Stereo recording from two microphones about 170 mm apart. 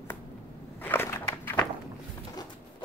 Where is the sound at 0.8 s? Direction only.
15° left (ahead or behind).